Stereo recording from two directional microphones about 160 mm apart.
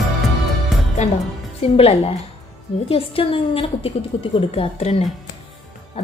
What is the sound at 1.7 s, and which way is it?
Speech, 35° left (ahead or behind).